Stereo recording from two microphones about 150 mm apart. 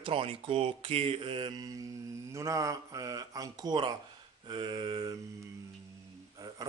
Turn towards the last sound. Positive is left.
turn(degrees=-25)  # may be behind; listen again after turning